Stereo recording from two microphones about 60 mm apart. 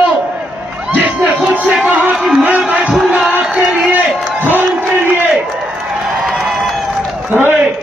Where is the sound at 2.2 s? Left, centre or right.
Centre.